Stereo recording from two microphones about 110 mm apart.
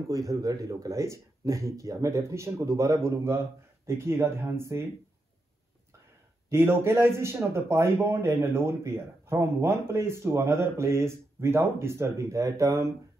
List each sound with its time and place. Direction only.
0.1 s a man's voice: 30° right (ahead or behind)
6.5 s a man's voice: 20° right (ahead or behind)